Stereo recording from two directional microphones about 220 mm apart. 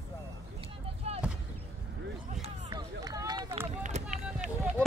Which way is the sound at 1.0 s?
30° right (ahead or behind).